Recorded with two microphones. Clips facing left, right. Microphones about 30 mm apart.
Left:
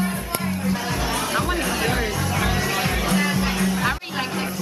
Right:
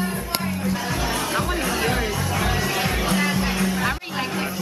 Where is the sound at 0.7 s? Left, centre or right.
Centre.